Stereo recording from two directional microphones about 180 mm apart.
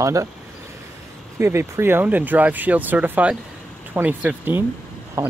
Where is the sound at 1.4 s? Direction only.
15° right (ahead or behind).